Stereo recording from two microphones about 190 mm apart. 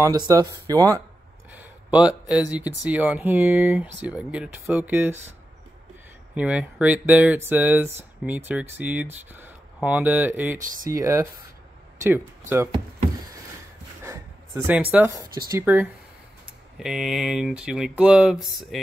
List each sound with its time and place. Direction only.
0.0 s speech: 20° right (ahead or behind)
1.5 s a sound: 5° right (ahead or behind)
2.5 s speech: 10° right (ahead or behind)
6.3 s speech: 5° right (ahead or behind)
10.6 s speech: 45° right (ahead or behind)
10.9 s speech: 15° right (ahead or behind)
14.0 s a sound: 15° right (ahead or behind)
15.6 s speech: 10° right (ahead or behind)